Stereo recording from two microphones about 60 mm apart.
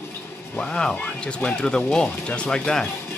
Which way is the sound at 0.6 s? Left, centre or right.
Centre.